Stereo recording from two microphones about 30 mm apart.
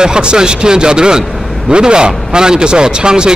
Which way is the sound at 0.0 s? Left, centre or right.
Right.